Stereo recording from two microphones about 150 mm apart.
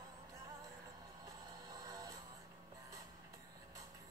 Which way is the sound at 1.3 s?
25° right (ahead or behind).